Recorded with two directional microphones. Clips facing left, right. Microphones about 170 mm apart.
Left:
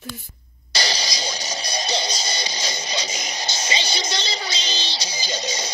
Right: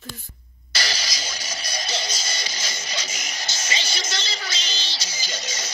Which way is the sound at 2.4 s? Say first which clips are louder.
Left 5 dB; 15° left (ahead or behind).